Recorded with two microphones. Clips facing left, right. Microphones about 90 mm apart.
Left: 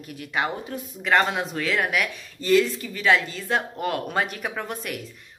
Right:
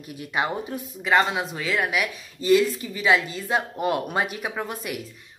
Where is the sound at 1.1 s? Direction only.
5° right (ahead or behind).